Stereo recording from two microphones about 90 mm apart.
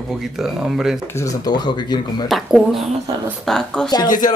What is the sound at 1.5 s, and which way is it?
Speech, 50° left (ahead or behind).